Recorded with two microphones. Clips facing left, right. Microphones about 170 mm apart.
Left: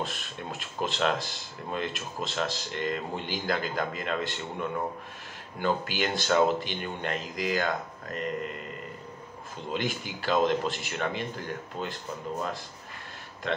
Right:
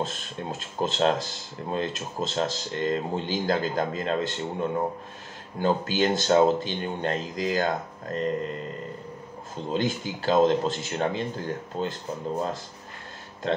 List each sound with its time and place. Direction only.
0.0 s speech: 20° right (ahead or behind)
9.7 s speech: 25° right (ahead or behind)